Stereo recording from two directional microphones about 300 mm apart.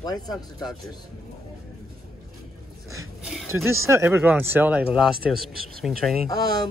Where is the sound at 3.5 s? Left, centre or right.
Left.